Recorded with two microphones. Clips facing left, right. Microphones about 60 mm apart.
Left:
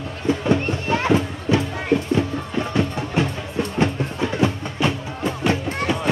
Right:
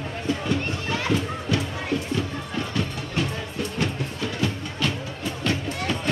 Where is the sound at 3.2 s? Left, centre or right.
Left.